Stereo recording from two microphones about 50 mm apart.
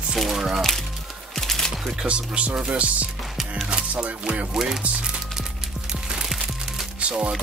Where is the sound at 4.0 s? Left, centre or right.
Centre.